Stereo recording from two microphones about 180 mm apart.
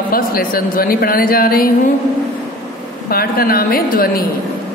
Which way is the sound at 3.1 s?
55° left (ahead or behind).